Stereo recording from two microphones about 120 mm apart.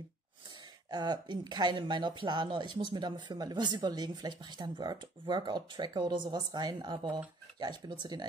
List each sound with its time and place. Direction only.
0.8 s speech: 35° right (ahead or behind)